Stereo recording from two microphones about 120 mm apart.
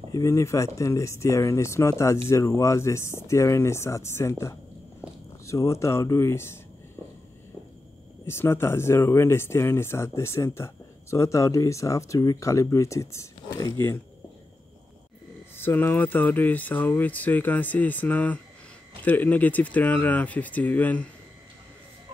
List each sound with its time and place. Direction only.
0.1 s speech: 30° left (ahead or behind)
5.0 s a sound: 10° right (ahead or behind)
5.5 s speech: 25° left (ahead or behind)
8.3 s speech: 20° left (ahead or behind)
15.5 s speech: 20° left (ahead or behind)